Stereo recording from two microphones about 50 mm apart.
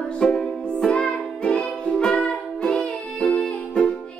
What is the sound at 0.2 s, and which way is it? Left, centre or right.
Music, centre.